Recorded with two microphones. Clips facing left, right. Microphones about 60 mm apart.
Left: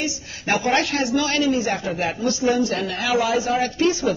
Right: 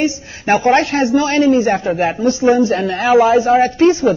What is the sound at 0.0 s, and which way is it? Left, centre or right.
Speech, right.